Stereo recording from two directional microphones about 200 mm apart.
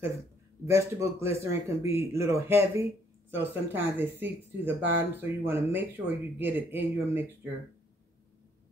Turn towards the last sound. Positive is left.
turn(degrees=-15)  # may be behind; listen again after turning